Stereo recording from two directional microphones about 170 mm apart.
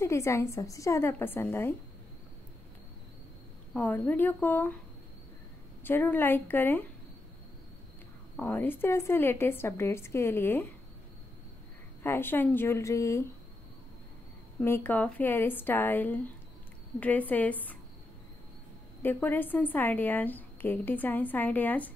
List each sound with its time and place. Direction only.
0.0 s a woman's voice: 15° left (ahead or behind)
3.7 s a woman's voice: 10° left (ahead or behind)
5.9 s a woman's voice: 10° left (ahead or behind)
8.4 s a woman's voice: 10° left (ahead or behind)
12.0 s a woman's voice: 15° left (ahead or behind)
14.6 s a woman's voice: 10° left (ahead or behind)
19.0 s a woman's voice: 10° left (ahead or behind)